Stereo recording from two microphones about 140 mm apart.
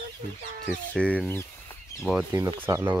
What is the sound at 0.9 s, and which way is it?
Speech, 10° left (ahead or behind).